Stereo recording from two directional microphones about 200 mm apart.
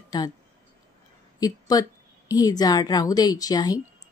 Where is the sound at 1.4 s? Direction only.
20° left (ahead or behind).